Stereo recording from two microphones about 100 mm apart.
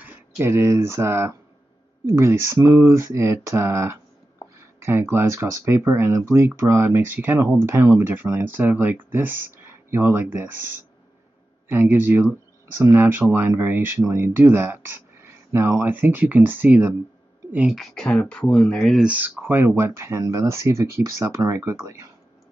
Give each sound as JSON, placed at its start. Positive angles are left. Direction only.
{"t": 0.0, "sound": "speech", "side_deg": -20}
{"t": 17.6, "sound": "speech", "side_deg": 5}
{"t": 18.9, "sound": "speech", "side_deg": -15}
{"t": 21.7, "sound": "speech", "side_deg": -35}